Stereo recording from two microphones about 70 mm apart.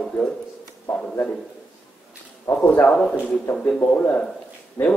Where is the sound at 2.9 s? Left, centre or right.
Centre.